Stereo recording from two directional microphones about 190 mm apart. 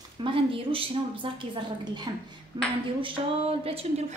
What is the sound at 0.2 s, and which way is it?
A woman's voice, 25° right (ahead or behind).